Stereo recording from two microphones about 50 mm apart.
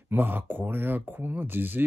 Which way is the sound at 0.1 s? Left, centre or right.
Right.